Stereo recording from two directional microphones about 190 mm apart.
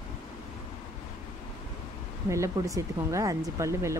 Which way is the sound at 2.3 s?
15° right (ahead or behind).